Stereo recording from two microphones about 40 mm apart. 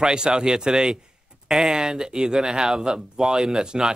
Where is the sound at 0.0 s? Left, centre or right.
Centre.